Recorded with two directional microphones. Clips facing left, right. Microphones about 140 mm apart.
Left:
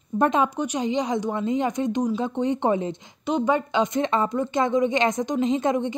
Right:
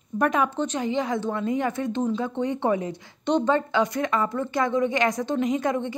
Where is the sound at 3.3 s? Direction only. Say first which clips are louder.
Right 1 dB; 10° left (ahead or behind).